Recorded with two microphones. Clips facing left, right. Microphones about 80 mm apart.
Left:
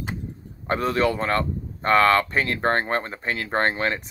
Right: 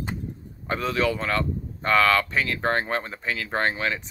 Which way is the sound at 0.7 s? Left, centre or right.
Left.